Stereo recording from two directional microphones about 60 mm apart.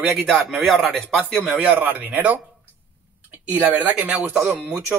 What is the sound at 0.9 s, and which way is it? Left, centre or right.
Speech, centre.